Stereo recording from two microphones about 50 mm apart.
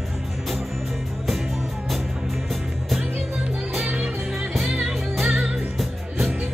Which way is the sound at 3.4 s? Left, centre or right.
Right.